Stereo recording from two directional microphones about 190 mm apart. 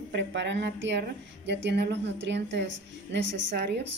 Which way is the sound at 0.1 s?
65° right (ahead or behind).